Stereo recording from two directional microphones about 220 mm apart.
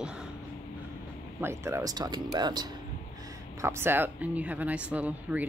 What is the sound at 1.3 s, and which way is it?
Speech, 10° right (ahead or behind).